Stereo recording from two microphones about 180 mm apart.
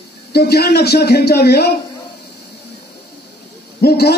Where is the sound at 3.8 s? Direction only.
60° left (ahead or behind).